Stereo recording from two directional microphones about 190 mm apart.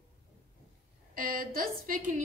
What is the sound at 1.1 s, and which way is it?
A woman's voice, 50° right (ahead or behind).